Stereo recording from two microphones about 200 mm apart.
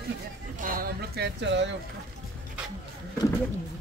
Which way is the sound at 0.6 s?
45° right (ahead or behind).